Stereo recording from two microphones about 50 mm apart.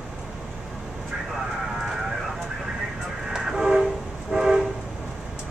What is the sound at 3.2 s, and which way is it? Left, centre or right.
Train, centre.